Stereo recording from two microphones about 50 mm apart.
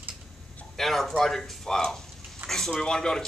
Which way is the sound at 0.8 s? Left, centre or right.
Centre.